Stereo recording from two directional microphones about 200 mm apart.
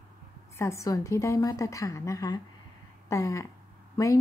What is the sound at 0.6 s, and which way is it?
A woman's voice, 15° left (ahead or behind).